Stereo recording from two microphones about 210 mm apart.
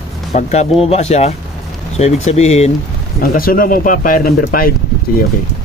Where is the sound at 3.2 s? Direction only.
45° left (ahead or behind).